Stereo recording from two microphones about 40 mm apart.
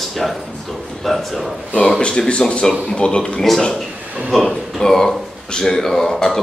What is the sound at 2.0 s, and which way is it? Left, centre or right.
Speech, left.